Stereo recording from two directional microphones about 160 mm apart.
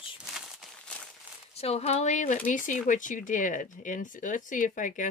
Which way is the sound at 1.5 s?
40° left (ahead or behind).